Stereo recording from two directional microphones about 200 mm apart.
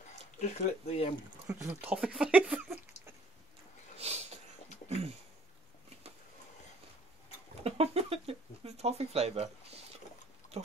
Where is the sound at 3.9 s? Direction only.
30° right (ahead or behind).